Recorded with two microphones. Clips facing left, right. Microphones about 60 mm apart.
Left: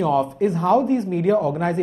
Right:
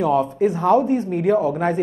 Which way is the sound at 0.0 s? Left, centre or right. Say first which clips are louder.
Right 1 dB; centre.